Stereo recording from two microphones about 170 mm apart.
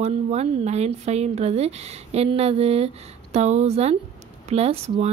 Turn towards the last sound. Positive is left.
turn(degrees=-35)  # may be behind; listen again after turning